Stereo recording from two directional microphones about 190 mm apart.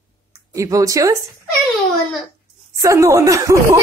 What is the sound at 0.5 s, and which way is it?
Speech, 15° right (ahead or behind).